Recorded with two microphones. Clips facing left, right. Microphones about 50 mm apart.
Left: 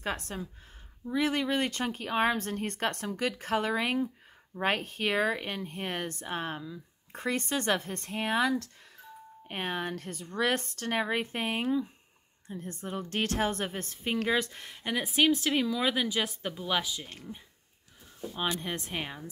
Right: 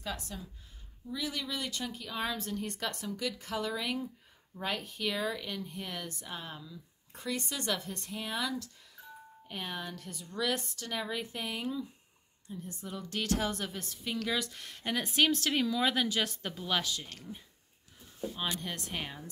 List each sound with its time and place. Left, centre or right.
0.0 s a woman's voice: left
14.7 s speech: centre
18.3 s speech: left